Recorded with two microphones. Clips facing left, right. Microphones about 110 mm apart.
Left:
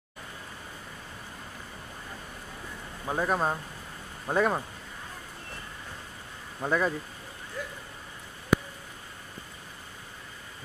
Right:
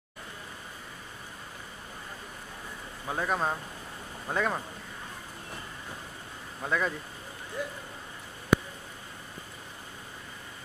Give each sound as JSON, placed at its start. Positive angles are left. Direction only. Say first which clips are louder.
{"t": 3.1, "sound": "speech", "louder": "left 2 dB", "side_deg": 5}
{"t": 6.6, "sound": "speech", "louder": "left 3 dB", "side_deg": 15}
{"t": 7.6, "sound": "speech", "louder": "right 3 dB", "side_deg": -20}